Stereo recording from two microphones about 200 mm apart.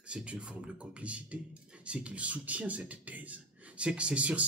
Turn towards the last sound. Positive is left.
turn(degrees=-5)  # may be behind; listen again after turning